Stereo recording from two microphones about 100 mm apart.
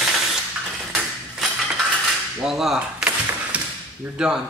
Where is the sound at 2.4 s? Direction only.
5° right (ahead or behind).